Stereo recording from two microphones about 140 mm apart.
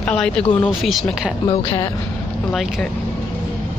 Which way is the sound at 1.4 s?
40° left (ahead or behind).